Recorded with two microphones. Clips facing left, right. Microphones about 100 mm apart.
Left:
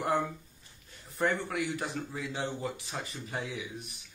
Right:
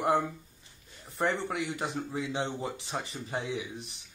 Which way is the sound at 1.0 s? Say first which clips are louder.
Right 1 dB; 25° right (ahead or behind).